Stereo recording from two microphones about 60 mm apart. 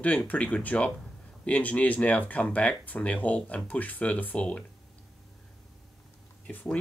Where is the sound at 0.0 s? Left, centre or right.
Left.